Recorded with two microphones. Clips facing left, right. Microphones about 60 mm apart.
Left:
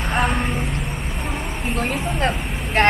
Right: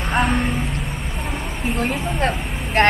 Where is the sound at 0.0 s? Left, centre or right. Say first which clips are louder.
Right 1 dB; centre.